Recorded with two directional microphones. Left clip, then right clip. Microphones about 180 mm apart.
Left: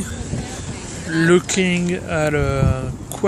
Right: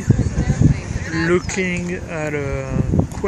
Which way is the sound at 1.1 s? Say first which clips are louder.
Left 3 dB; 50° left (ahead or behind).